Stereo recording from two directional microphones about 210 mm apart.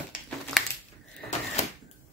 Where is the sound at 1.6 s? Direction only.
35° left (ahead or behind).